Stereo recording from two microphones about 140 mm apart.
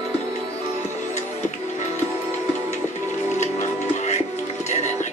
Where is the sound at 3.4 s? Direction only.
55° left (ahead or behind).